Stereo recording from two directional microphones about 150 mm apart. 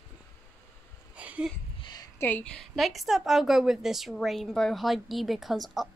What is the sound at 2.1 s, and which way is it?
A woman's voice, 15° left (ahead or behind).